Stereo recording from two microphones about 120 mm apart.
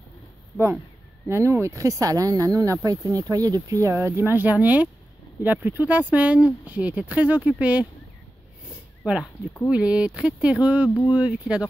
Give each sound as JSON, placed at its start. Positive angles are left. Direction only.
{"t": 1.2, "sound": "speech", "side_deg": -20}
{"t": 9.0, "sound": "speech", "side_deg": -5}